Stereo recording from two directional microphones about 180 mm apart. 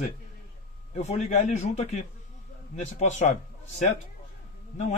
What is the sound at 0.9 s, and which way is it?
A man's voice, 40° left (ahead or behind).